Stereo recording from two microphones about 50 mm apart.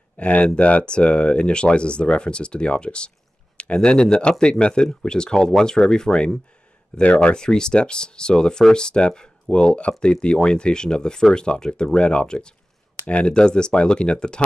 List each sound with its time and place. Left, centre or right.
0.2 s speech: left